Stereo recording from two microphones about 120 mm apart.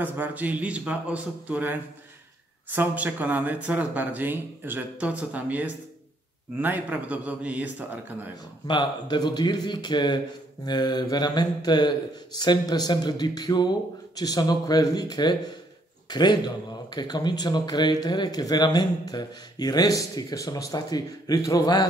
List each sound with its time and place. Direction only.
0.0 s speech: 15° right (ahead or behind)
8.6 s speech: 40° left (ahead or behind)